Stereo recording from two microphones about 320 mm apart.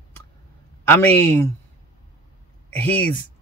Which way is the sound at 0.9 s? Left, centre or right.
Centre.